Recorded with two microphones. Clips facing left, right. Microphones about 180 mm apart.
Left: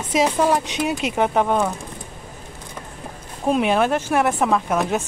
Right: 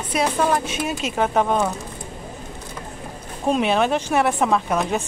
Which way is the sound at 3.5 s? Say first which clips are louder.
Left 1 dB; 10° left (ahead or behind).